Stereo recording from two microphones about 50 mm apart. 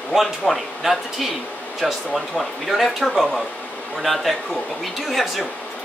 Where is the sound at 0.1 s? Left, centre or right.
Centre.